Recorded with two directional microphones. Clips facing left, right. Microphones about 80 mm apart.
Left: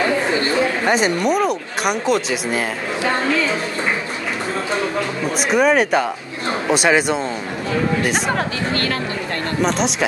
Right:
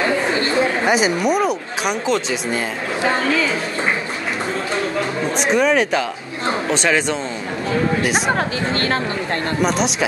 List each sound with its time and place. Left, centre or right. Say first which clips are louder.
0.3 s chatter: left 1 dB; left
0.8 s speech: even; centre
5.4 s speech: left 1 dB; centre
8.4 s speech: right 1 dB; right
9.6 s speech: left 1 dB; centre